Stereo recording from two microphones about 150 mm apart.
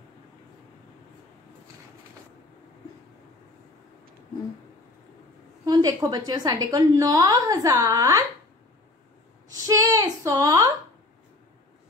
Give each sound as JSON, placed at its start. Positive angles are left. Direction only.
{"t": 5.7, "sound": "a woman's voice", "side_deg": -25}
{"t": 9.7, "sound": "speech", "side_deg": -20}